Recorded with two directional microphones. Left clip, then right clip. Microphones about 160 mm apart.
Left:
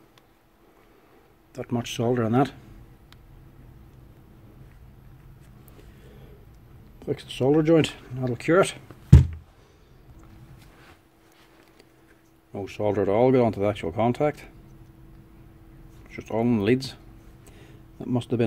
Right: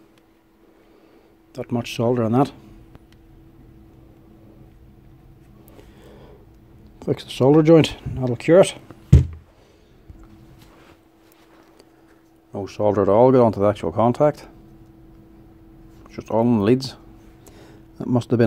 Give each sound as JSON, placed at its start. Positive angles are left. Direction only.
{"t": 1.5, "sound": "speech", "side_deg": -20}
{"t": 7.0, "sound": "speech", "side_deg": -40}
{"t": 12.5, "sound": "speech", "side_deg": -20}
{"t": 16.1, "sound": "speech", "side_deg": -20}
{"t": 17.5, "sound": "a sound", "side_deg": -30}